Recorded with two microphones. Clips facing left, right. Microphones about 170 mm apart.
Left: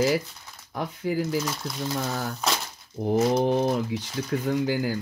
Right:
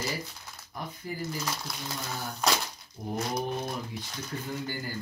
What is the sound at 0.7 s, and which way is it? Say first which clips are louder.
Speech: left 10 dB; 80° left.